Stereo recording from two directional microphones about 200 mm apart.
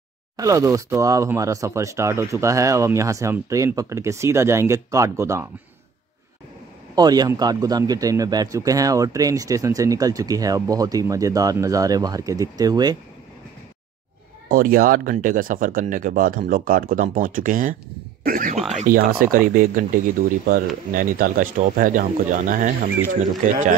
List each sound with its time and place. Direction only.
0.4 s speech: 15° right (ahead or behind)
7.0 s speech: 20° right (ahead or behind)
14.5 s speech: 45° right (ahead or behind)